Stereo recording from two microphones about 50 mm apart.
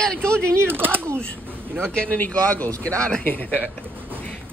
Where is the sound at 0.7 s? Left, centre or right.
Right.